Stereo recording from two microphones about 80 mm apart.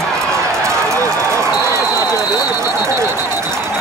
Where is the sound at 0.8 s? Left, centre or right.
Right.